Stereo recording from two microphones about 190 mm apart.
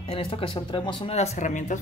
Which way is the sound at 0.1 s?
30° left (ahead or behind).